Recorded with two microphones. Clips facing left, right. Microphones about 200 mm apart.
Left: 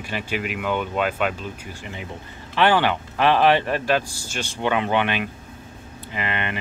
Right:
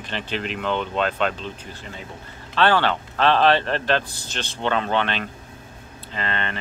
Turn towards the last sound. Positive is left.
turn(degrees=15)  # may be behind; listen again after turning